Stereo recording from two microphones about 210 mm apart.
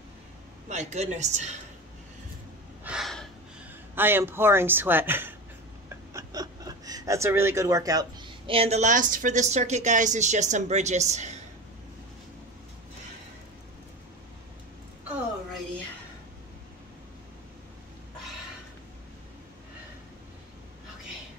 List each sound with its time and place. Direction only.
0.7 s a woman's voice: 35° right (ahead or behind)
2.8 s gasp: 5° right (ahead or behind)
3.9 s speech: 10° right (ahead or behind); by 11.3 s 35° right (ahead or behind)